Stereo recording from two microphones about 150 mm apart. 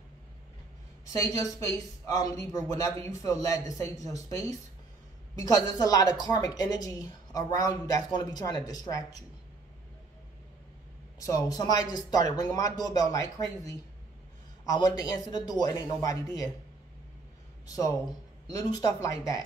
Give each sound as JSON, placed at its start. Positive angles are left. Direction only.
{"t": 1.0, "sound": "speech", "side_deg": 20}
{"t": 11.1, "sound": "speech", "side_deg": 20}
{"t": 17.6, "sound": "speech", "side_deg": 25}